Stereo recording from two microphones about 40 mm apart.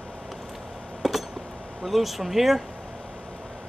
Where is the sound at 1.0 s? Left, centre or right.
Centre.